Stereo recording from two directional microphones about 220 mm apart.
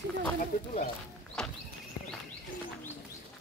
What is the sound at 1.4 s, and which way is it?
Speech, 5° left (ahead or behind).